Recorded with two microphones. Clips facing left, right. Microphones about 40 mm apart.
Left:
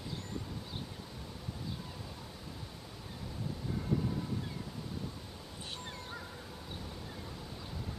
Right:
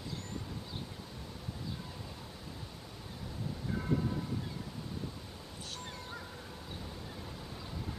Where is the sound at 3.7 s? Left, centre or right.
Right.